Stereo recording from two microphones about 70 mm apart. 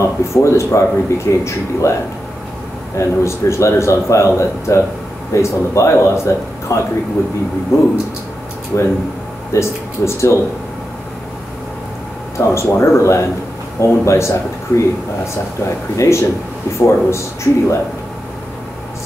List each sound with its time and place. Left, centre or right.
0.0 s a man's voice: left
3.0 s a man's voice: left
12.4 s a man's voice: left
16.0 s a man's voice: left